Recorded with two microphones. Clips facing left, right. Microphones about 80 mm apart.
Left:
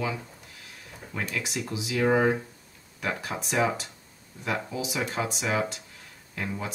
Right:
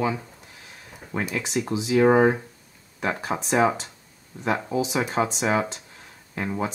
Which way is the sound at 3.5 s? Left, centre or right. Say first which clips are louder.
Right 5 dB; right.